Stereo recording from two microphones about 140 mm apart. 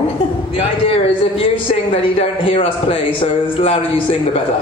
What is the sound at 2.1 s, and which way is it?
A woman's voice, 45° left (ahead or behind).